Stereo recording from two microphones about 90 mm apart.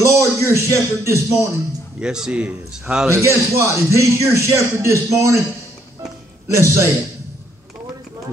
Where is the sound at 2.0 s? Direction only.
10° right (ahead or behind).